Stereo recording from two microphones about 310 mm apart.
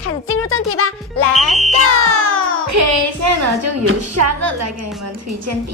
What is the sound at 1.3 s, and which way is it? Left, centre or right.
Speech, centre.